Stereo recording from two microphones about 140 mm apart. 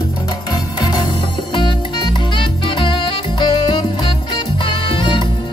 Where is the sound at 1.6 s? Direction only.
35° left (ahead or behind).